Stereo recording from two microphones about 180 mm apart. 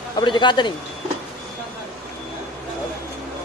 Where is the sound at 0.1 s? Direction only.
25° left (ahead or behind).